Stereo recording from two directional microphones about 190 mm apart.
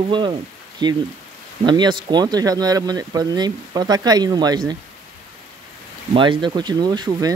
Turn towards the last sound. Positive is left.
turn(degrees=-20)  # may be behind; listen again after turning